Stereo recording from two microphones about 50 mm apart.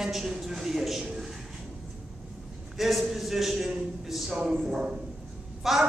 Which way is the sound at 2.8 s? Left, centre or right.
Centre.